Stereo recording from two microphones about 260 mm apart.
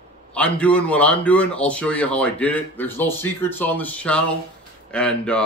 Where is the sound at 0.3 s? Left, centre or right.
Centre.